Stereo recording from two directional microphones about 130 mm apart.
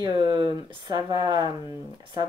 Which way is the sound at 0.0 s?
30° right (ahead or behind).